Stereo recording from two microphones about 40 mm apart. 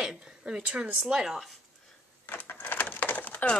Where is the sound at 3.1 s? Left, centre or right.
Left.